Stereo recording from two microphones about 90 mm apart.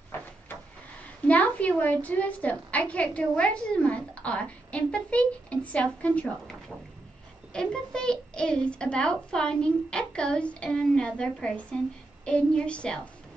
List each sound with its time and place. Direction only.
1.2 s a woman's voice: 15° left (ahead or behind)
7.5 s a woman's voice: 10° left (ahead or behind)